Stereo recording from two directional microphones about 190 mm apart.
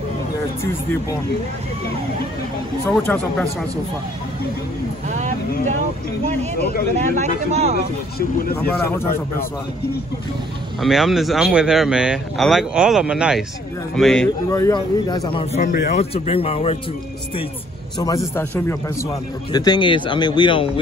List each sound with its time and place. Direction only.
3.0 s a man's voice: 10° left (ahead or behind)
5.1 s speech: 40° right (ahead or behind)
7.0 s speech: 35° right (ahead or behind)
10.8 s speech: centre (ahead or behind)
14.5 s speech: 20° left (ahead or behind)
15.6 s a man's voice: 45° left (ahead or behind)
16.0 s speech: 30° left (ahead or behind)
17.9 s a man's voice: 20° left (ahead or behind)
19.5 s speech: 20° left (ahead or behind)